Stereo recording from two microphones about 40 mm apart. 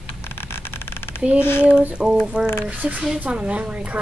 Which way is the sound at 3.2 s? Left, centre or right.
Right.